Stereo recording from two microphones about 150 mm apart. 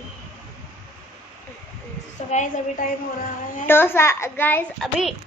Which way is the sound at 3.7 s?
15° left (ahead or behind).